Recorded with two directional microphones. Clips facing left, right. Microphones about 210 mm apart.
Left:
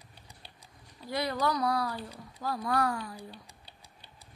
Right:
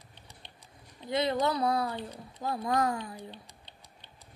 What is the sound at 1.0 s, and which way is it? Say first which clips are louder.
Speech: right 3 dB; 20° right (ahead or behind).